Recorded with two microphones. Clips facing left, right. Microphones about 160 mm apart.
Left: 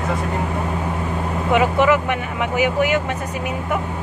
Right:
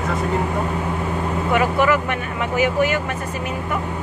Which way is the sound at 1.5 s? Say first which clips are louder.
Left 2 dB; 15° left (ahead or behind).